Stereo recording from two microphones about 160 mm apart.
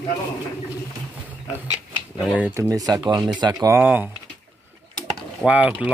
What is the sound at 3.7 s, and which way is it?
Speech, 10° right (ahead or behind).